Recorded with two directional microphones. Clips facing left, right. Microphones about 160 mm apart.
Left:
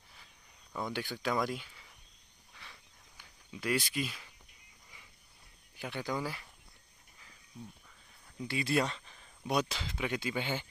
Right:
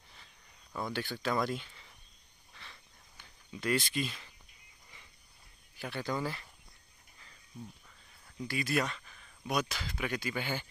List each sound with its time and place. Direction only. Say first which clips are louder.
0.7 s speech: even; 15° left (ahead or behind)
2.5 s cricket: right 1 dB; 10° left (ahead or behind)
5.8 s speech: right 1 dB; 15° left (ahead or behind)
8.5 s speech: left 1 dB; 25° left (ahead or behind)